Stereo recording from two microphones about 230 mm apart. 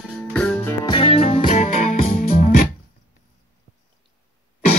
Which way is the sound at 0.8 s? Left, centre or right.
Left.